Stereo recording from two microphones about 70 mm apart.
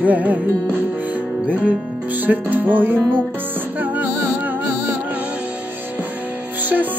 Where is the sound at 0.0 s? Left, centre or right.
Right.